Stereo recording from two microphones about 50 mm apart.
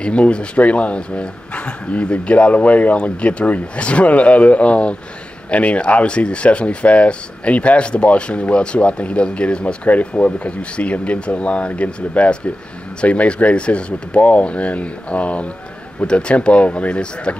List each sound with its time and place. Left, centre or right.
0.0 s speech: left